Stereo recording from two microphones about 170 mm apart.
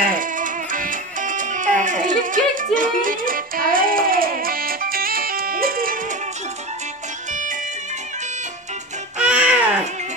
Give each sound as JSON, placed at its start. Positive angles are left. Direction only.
{"t": 0.0, "sound": "music", "side_deg": -55}
{"t": 9.2, "sound": "music", "side_deg": -5}